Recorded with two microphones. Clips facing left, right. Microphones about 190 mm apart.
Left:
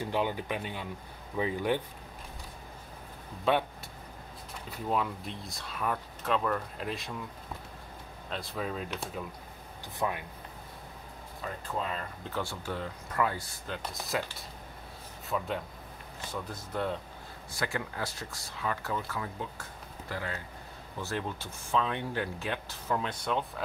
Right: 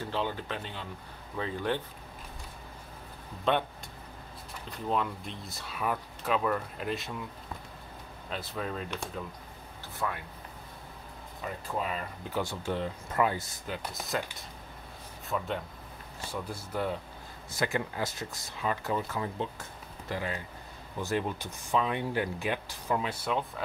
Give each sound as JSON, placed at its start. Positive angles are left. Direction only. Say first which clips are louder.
{"t": 0.0, "sound": "speech", "louder": "left 2 dB", "side_deg": 15}
{"t": 3.5, "sound": "speech", "louder": "left 1 dB", "side_deg": 5}
{"t": 4.6, "sound": "speech", "louder": "even", "side_deg": 5}
{"t": 8.3, "sound": "speech", "louder": "even", "side_deg": 0}
{"t": 9.9, "sound": "speech", "louder": "left 2 dB", "side_deg": 20}
{"t": 11.4, "sound": "speech", "louder": "right 1 dB", "side_deg": -10}
{"t": 13.7, "sound": "speech", "louder": "even", "side_deg": -5}
{"t": 15.2, "sound": "speech", "louder": "even", "side_deg": 0}
{"t": 16.3, "sound": "speech", "louder": "right 1 dB", "side_deg": -10}
{"t": 17.6, "sound": "speech", "louder": "right 3 dB", "side_deg": -20}